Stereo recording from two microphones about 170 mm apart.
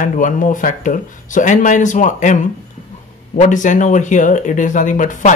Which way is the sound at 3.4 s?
45° left (ahead or behind).